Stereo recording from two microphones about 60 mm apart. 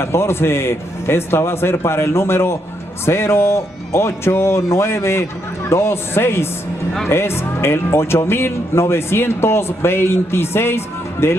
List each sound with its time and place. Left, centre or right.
0.0 s speech: left